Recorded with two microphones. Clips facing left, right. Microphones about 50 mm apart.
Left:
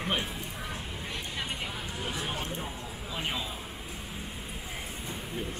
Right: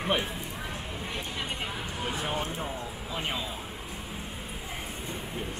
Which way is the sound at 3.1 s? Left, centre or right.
Centre.